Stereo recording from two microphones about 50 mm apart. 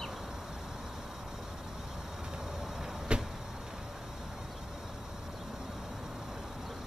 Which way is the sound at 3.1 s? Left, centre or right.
Right.